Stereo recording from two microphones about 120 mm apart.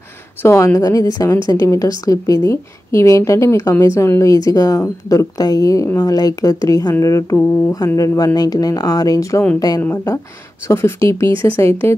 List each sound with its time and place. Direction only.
0.4 s a woman's voice: 20° left (ahead or behind)